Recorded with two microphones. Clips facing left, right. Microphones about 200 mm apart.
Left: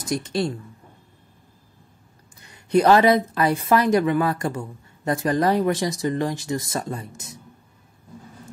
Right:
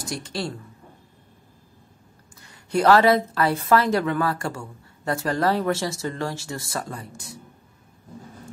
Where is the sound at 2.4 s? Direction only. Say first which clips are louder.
Left 2 dB; 20° left (ahead or behind).